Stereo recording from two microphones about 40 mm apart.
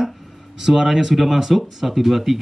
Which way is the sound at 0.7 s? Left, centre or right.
Centre.